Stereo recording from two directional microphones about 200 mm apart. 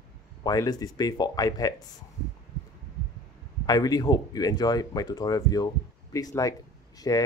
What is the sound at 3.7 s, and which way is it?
Speech, 20° left (ahead or behind).